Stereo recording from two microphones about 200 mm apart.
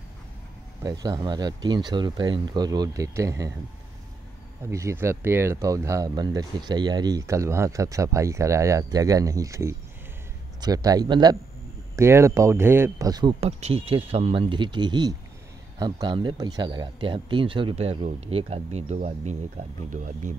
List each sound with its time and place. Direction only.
0.8 s speech: 20° right (ahead or behind)
4.6 s speech: 15° right (ahead or behind); by 20.3 s 40° right (ahead or behind)